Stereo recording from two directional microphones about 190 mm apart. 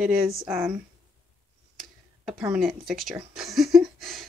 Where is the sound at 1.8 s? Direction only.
5° right (ahead or behind).